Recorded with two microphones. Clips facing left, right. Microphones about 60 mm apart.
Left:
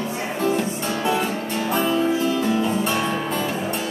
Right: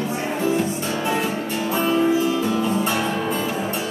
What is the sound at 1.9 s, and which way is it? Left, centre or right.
Music, centre.